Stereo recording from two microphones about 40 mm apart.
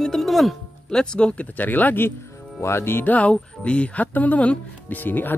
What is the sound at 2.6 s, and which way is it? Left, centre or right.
Music, left.